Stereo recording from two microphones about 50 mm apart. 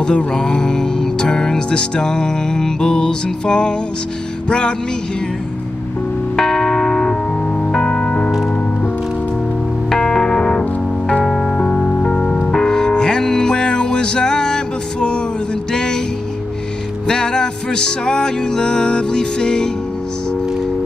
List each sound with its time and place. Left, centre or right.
0.0 s music: centre
6.3 s music: centre
9.8 s music: centre
11.2 s piano: centre
11.5 s music: left
12.0 s music: centre
17.1 s music: centre